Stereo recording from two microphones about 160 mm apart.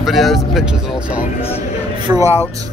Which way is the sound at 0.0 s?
Centre (ahead or behind).